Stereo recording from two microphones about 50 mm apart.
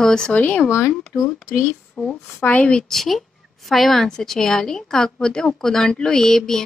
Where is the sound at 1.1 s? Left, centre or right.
Left.